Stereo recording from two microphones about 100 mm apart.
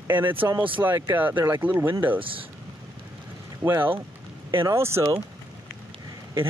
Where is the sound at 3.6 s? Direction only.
20° right (ahead or behind).